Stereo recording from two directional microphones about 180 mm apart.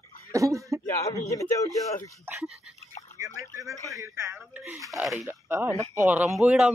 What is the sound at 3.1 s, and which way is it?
Speech, 15° right (ahead or behind).